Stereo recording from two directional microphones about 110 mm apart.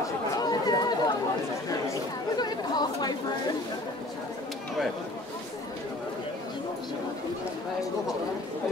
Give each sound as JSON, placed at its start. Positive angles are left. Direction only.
{"t": 0.4, "sound": "chatter", "side_deg": 40}
{"t": 2.3, "sound": "speech", "side_deg": 40}